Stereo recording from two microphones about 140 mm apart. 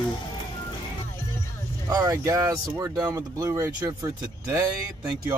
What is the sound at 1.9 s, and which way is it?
Speech, 25° right (ahead or behind).